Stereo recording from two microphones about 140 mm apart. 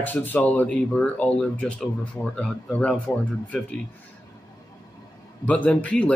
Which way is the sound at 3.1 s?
20° left (ahead or behind).